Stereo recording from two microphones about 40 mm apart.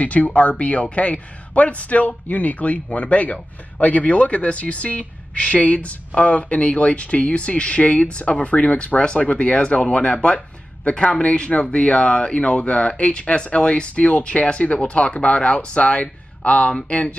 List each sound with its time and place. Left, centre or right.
0.0 s speech: left